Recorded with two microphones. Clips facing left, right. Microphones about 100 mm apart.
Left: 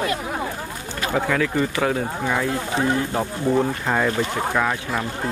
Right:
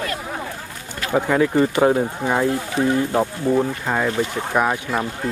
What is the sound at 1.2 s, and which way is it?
Speech, 20° right (ahead or behind).